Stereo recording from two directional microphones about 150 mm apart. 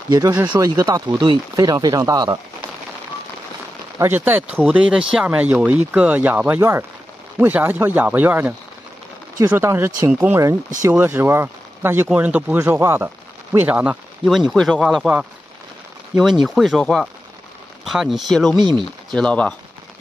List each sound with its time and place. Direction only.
0.1 s speech: 25° right (ahead or behind)
4.0 s speech: 10° right (ahead or behind)
16.4 s speech: centre (ahead or behind)
18.6 s speech: 30° right (ahead or behind)
19.0 s speech: 5° left (ahead or behind)